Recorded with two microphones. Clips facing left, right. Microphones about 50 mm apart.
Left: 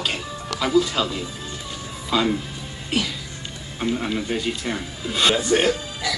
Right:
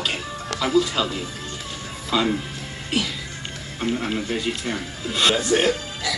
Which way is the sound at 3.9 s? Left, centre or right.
Centre.